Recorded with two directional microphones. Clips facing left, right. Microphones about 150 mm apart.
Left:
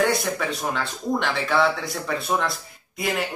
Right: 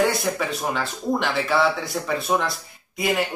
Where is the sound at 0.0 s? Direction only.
Centre (ahead or behind).